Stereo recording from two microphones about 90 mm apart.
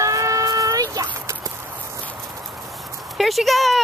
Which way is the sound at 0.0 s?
35° right (ahead or behind).